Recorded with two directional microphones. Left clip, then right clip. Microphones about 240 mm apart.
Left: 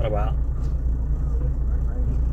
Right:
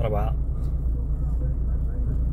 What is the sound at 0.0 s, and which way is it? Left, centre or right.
Vehicle, centre.